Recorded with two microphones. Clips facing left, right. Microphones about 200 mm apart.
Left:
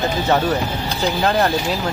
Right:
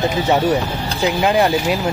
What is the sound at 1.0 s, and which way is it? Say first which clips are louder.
Speech: right 3 dB; 10° right (ahead or behind).